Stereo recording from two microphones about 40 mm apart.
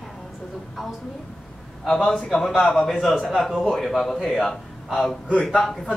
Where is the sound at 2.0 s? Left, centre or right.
Centre.